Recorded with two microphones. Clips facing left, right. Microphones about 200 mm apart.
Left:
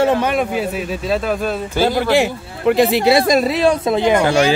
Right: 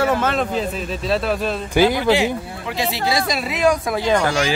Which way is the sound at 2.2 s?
55° left (ahead or behind).